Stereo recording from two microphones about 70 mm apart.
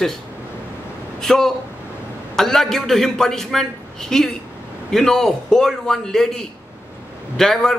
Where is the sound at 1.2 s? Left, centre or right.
Centre.